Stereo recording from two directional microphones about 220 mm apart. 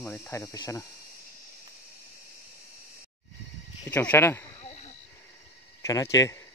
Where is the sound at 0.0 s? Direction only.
10° left (ahead or behind).